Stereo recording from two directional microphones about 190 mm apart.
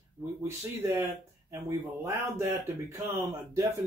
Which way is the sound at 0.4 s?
15° right (ahead or behind).